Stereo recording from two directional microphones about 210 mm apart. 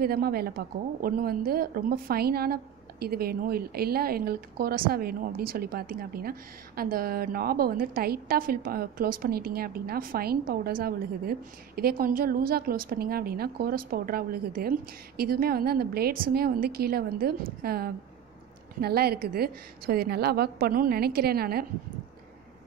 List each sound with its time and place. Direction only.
0.0 s a woman's voice: 45° right (ahead or behind)